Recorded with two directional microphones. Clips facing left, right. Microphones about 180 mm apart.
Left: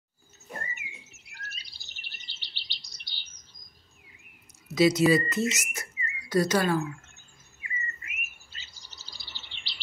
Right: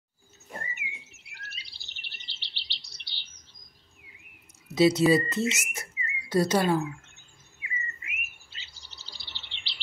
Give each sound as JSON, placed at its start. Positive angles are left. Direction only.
{"t": 0.6, "sound": "bird", "side_deg": 40}
{"t": 4.7, "sound": "speech", "side_deg": -30}
{"t": 7.6, "sound": "chirp", "side_deg": 40}